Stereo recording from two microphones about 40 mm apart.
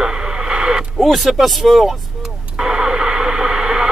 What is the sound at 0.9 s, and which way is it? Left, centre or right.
Speech, centre.